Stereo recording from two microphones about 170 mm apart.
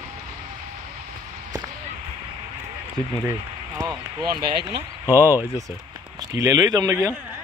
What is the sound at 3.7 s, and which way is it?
A man's voice, 20° right (ahead or behind).